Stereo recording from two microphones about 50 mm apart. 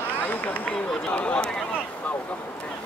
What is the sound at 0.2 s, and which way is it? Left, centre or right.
Speech, left.